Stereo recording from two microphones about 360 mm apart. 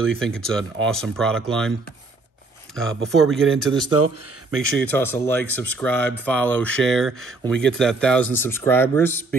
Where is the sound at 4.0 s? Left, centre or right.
Right.